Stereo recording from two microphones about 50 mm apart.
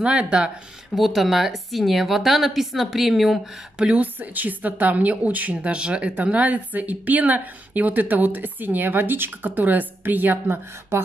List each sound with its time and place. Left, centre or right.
0.0 s speech: right
0.9 s a woman's voice: centre
3.7 s speech: centre
4.0 s speech: right
10.9 s a sound: right